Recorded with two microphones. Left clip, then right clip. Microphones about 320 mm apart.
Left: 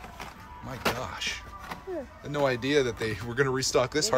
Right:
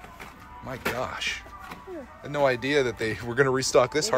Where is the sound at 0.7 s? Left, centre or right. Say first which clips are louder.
Right 1 dB; centre.